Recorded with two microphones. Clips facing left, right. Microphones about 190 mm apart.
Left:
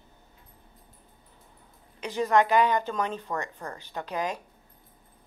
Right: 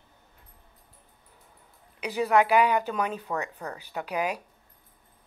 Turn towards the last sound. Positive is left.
turn(degrees=-10)  # may be behind; listen again after turning